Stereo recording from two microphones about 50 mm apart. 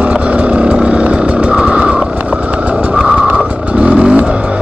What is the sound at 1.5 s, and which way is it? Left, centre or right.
Vehicle, right.